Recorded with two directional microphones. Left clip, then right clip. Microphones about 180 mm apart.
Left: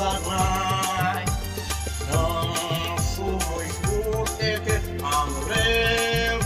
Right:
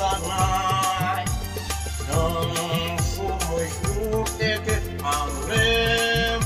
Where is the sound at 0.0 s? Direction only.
Centre (ahead or behind).